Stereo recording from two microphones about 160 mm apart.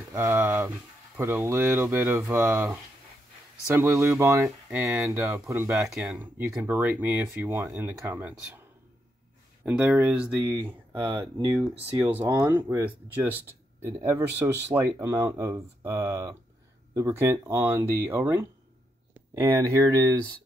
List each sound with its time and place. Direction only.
0.1 s speech: 15° right (ahead or behind)
5.8 s speech: centre (ahead or behind)
9.7 s speech: 10° right (ahead or behind)
10.4 s speech: 25° right (ahead or behind)
12.1 s speech: 10° right (ahead or behind)
19.9 s speech: 25° right (ahead or behind)